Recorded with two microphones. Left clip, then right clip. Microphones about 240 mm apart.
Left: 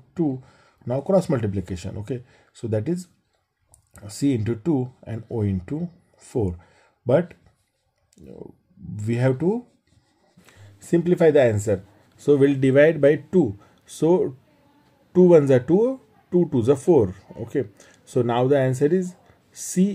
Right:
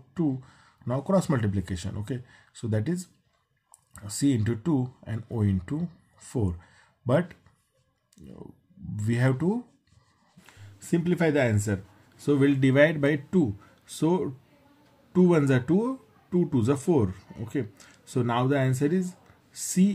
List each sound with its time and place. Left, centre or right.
0.5 s speech: centre
8.9 s speech: centre
10.8 s speech: left